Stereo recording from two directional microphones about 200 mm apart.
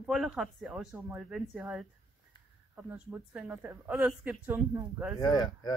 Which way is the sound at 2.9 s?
10° right (ahead or behind).